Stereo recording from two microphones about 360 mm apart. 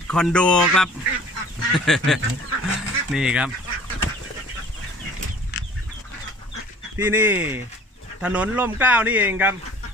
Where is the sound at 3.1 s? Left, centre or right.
Centre.